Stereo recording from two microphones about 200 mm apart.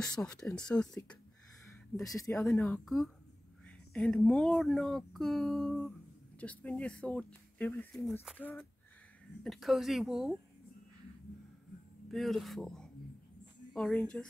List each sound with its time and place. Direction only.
0.0 s speech: 5° left (ahead or behind)
2.0 s speech: 15° left (ahead or behind)
2.8 s speech: centre (ahead or behind)
12.1 s speech: centre (ahead or behind)